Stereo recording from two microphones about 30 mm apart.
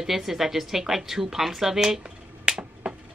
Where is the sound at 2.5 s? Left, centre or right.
Right.